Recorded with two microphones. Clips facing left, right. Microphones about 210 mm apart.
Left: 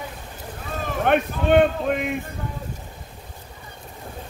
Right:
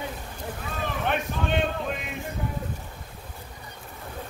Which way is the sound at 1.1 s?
60° left (ahead or behind).